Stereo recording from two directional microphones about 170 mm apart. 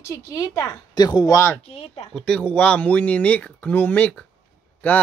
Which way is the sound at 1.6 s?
35° left (ahead or behind).